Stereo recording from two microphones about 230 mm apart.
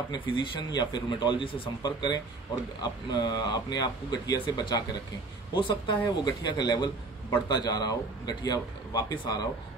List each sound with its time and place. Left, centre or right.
0.1 s a man's voice: left